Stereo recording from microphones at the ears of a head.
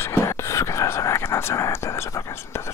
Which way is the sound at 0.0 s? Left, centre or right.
Left.